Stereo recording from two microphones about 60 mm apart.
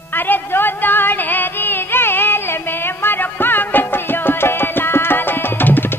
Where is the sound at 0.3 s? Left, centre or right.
Left.